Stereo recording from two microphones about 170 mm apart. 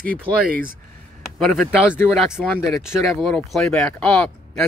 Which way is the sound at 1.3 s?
Centre (ahead or behind).